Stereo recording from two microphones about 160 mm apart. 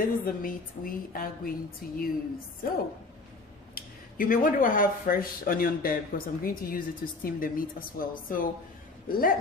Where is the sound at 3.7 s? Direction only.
60° left (ahead or behind).